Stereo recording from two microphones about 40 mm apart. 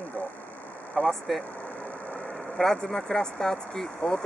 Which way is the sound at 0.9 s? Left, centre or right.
Centre.